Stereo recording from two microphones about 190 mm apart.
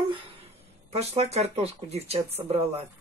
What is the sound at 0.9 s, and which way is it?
Speech, 35° right (ahead or behind).